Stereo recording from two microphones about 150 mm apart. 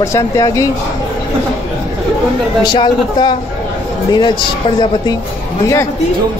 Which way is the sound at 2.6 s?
30° left (ahead or behind).